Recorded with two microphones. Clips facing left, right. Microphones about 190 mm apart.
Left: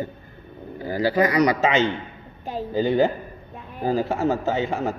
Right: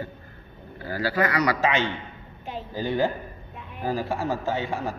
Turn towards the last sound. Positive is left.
turn(degrees=25)  # may be behind; listen again after turning